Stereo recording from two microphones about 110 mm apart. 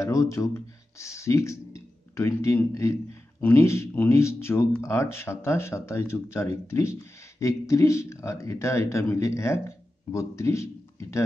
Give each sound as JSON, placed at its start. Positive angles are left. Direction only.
{"t": 0.0, "sound": "speech", "side_deg": 30}